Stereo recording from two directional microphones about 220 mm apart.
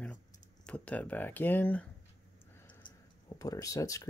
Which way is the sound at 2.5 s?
10° left (ahead or behind).